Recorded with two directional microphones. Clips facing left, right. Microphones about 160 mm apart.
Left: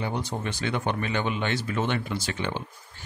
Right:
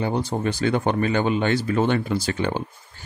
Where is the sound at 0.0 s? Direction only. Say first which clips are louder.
Right 7 dB; 30° right (ahead or behind).